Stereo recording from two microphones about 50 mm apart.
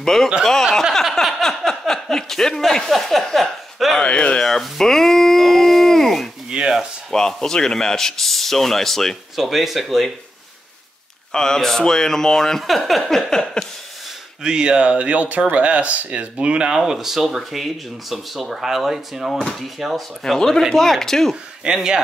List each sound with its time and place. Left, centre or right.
0.0 s speech: centre
1.2 s a sound: centre
4.0 s speech: left
4.5 s a sound: centre
6.5 s a sound: centre
7.1 s a man's voice: centre
9.4 s speech: centre
11.3 s a man's voice: centre
13.3 s a man's voice: centre
14.4 s a man's voice: centre
21.7 s speech: centre